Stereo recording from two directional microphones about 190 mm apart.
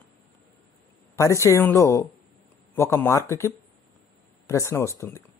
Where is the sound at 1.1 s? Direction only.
15° left (ahead or behind).